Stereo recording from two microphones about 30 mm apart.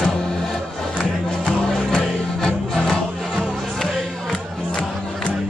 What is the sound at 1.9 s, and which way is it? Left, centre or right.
Music, centre.